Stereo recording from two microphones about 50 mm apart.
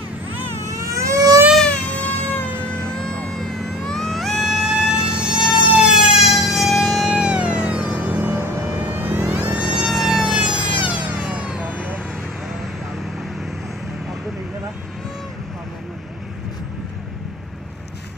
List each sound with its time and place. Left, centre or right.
0.7 s vehicle: right
1.7 s cat: left
2.7 s vehicle: left; by 5.5 s centre
5.6 s emergency vehicle: right
5.9 s emergency vehicle: centre
7.2 s music: right
8.2 s music: right
9.3 s vehicle: right
9.8 s music: centre
11.1 s vehicle: right